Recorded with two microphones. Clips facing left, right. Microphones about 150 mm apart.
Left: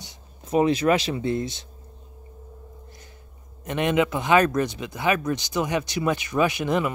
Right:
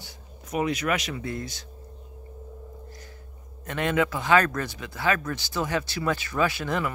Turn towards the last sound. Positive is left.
turn(degrees=20)  # may be behind; listen again after turning